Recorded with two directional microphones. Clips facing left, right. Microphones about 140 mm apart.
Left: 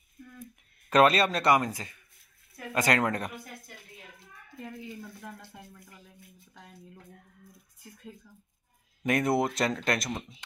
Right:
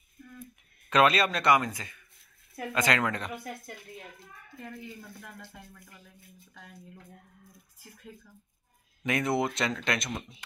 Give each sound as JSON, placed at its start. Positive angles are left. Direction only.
{"t": 0.8, "sound": "speech", "side_deg": 40}
{"t": 4.6, "sound": "speech", "side_deg": 20}
{"t": 9.0, "sound": "speech", "side_deg": 45}